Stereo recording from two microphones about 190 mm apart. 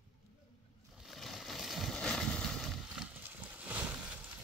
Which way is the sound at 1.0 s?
Centre (ahead or behind).